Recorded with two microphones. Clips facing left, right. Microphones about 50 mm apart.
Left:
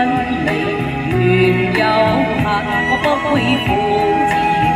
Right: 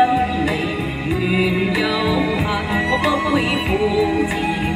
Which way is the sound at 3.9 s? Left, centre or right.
Left.